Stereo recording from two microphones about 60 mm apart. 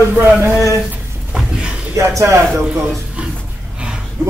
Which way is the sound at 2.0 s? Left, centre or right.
Right.